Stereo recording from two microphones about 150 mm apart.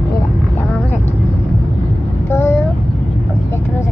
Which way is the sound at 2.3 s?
15° left (ahead or behind).